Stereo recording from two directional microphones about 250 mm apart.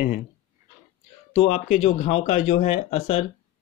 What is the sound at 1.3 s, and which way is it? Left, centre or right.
Speech, left.